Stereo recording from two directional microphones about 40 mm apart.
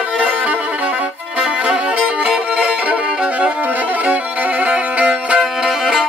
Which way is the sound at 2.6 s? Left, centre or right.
Right.